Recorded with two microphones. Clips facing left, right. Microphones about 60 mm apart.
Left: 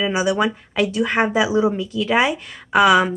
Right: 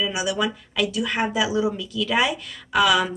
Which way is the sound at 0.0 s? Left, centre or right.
Left.